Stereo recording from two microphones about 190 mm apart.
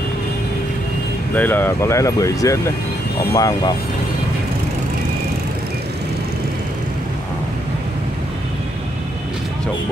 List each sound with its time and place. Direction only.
1.3 s speech: 10° left (ahead or behind)